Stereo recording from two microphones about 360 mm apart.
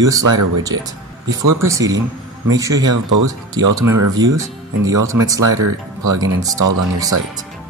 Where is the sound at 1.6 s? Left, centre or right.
Centre.